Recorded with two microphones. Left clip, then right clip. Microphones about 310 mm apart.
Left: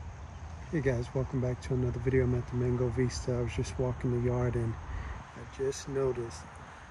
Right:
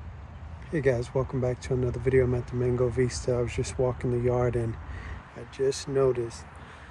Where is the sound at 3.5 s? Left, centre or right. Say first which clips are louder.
Right 6 dB; right.